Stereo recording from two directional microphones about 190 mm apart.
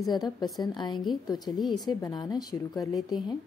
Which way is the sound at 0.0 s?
20° left (ahead or behind).